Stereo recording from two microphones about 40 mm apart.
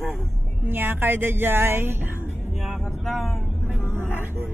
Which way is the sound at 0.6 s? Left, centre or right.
Right.